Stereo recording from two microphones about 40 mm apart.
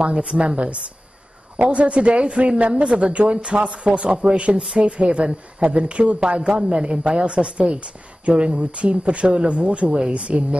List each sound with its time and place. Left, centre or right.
0.0 s a woman's voice: right